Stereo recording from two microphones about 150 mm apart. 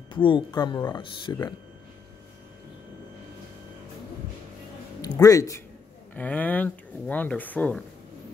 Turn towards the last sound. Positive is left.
turn(degrees=10)  # may be behind; listen again after turning